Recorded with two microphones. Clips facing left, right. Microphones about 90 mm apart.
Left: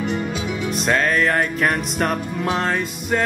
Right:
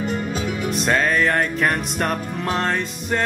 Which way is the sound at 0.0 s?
45° right (ahead or behind).